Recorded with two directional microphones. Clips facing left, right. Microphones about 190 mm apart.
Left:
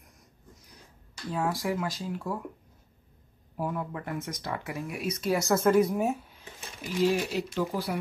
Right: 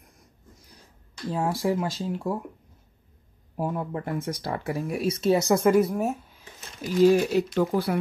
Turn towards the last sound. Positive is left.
turn(degrees=-55)  # may be behind; listen again after turning